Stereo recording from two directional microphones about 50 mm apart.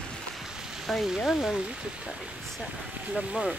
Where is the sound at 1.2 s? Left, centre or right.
Centre.